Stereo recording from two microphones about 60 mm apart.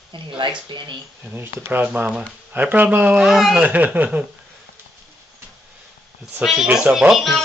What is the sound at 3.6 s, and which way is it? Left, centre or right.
Speech, right.